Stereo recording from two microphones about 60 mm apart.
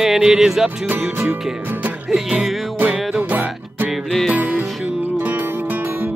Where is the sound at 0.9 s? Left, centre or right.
Right.